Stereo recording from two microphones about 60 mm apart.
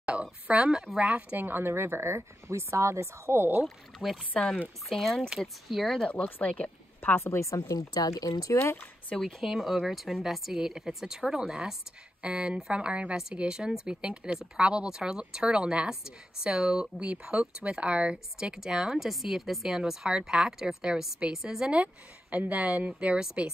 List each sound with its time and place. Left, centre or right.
0.0 s a sound: centre
0.9 s speech: centre
1.3 s speech: right
3.6 s speech: centre
6.2 s speech: left
7.2 s speech: left
9.1 s speech: centre
9.5 s speech: centre
17.0 s a woman's voice: centre